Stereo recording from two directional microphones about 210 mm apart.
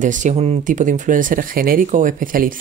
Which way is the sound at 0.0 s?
35° right (ahead or behind).